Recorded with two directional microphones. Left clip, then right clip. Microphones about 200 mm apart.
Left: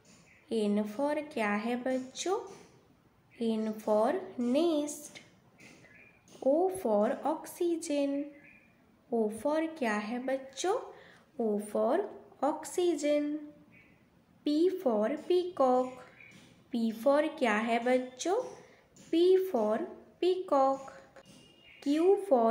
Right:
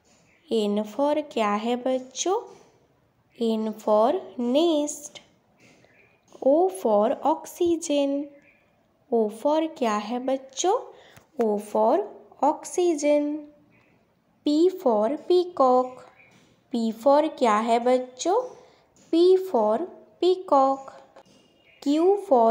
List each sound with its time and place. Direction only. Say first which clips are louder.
0.5 s a woman's voice: right 7 dB; 35° right (ahead or behind)
3.3 s a woman's voice: right 7 dB; 35° right (ahead or behind)
6.4 s a woman's voice: right 8 dB; 30° right (ahead or behind)
14.4 s a woman's voice: right 7 dB; 30° right (ahead or behind)
21.7 s a woman's voice: right 6 dB; 25° right (ahead or behind)